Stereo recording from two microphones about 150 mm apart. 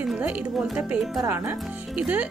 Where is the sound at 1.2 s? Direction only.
15° right (ahead or behind).